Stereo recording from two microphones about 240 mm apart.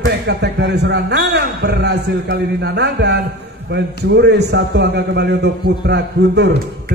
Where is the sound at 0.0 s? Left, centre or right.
Right.